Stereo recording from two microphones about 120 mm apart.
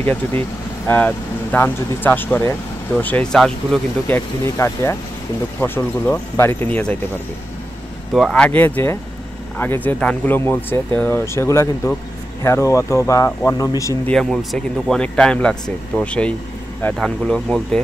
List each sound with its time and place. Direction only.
0.0 s speech: 15° left (ahead or behind)
4.1 s speech: 20° left (ahead or behind)
8.1 s speech: centre (ahead or behind); by 13.9 s 25° left (ahead or behind)
14.0 s speech: 5° left (ahead or behind)